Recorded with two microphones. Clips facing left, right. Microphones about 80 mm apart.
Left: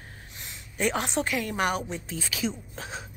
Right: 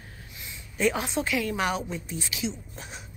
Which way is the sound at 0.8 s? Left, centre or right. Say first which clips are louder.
Right 1 dB; left.